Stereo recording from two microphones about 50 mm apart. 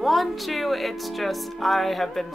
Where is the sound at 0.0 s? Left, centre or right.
Centre.